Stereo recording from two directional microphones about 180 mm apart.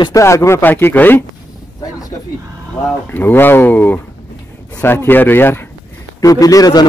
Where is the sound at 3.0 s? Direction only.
10° left (ahead or behind).